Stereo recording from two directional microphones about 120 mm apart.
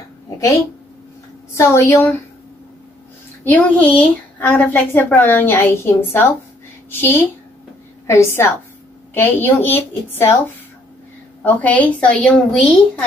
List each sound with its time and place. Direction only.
1.5 s a woman's voice: 20° left (ahead or behind)
3.4 s a woman's voice: 15° left (ahead or behind)
11.4 s a woman's voice: 15° left (ahead or behind)